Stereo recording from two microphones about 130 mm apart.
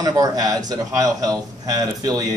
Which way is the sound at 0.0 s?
30° right (ahead or behind).